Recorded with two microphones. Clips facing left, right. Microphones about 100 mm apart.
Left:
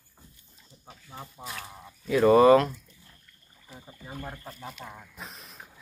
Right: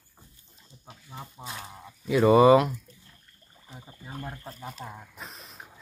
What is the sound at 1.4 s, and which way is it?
Speech, 25° right (ahead or behind).